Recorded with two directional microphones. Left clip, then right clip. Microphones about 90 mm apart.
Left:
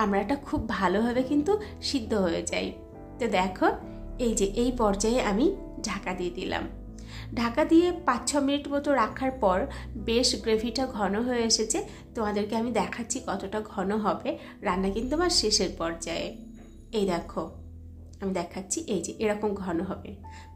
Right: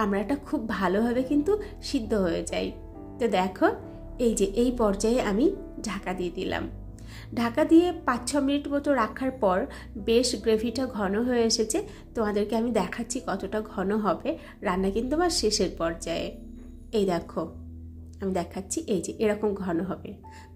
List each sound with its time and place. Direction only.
0.0 s a woman's voice: 25° right (ahead or behind)